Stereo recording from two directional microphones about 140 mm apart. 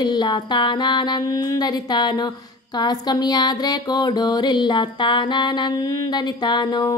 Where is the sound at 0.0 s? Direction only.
30° left (ahead or behind).